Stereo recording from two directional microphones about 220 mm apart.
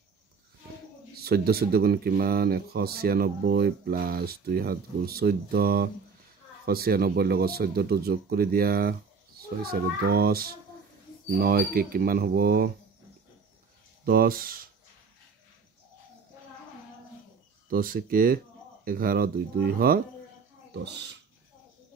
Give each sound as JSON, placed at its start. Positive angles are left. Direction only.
{"t": 1.1, "sound": "speech", "side_deg": -45}
{"t": 14.0, "sound": "speech", "side_deg": -40}
{"t": 17.6, "sound": "speech", "side_deg": -40}